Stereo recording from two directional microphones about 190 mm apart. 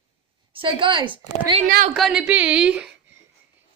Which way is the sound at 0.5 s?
25° right (ahead or behind).